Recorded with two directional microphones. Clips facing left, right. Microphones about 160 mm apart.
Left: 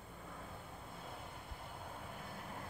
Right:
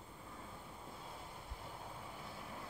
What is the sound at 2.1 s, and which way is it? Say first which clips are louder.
Vehicle: left 1 dB; 55° left (ahead or behind).